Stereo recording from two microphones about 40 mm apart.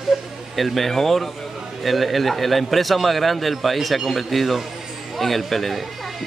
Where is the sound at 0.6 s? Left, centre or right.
Centre.